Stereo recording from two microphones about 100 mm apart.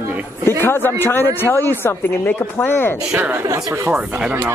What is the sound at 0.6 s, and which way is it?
Speech, 20° left (ahead or behind).